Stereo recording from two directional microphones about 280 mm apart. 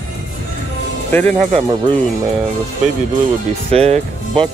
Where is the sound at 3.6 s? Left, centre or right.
Right.